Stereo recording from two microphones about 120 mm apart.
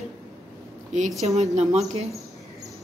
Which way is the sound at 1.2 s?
65° right (ahead or behind).